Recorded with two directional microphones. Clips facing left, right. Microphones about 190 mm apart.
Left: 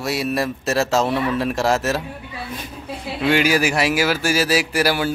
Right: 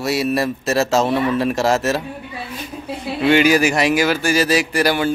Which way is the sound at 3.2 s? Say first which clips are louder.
Right 4 dB; centre (ahead or behind).